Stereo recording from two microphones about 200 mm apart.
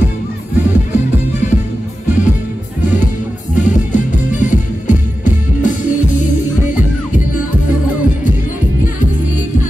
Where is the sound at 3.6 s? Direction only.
40° left (ahead or behind).